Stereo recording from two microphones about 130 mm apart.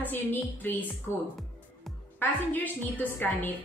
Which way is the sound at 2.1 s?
15° left (ahead or behind).